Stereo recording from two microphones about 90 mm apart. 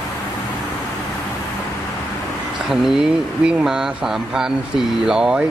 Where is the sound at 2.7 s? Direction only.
5° right (ahead or behind).